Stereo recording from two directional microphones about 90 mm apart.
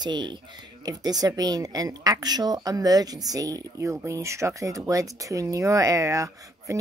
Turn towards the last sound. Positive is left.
turn(degrees=-35)  # may be behind; listen again after turning